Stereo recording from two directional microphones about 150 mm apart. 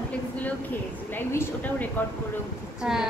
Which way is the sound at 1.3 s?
15° left (ahead or behind).